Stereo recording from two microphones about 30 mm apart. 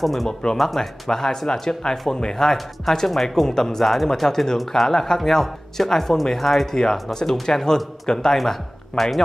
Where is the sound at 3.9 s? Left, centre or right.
Centre.